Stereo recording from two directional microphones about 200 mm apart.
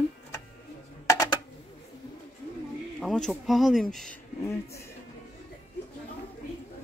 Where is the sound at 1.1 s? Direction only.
15° left (ahead or behind).